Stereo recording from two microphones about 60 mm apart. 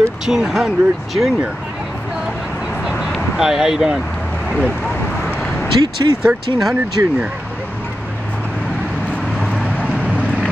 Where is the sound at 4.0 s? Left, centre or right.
Centre.